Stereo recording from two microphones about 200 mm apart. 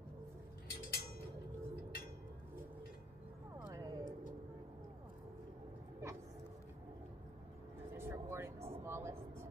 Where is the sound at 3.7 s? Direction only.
15° right (ahead or behind).